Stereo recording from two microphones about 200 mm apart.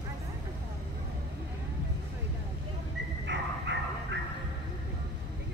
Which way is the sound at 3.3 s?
65° right (ahead or behind).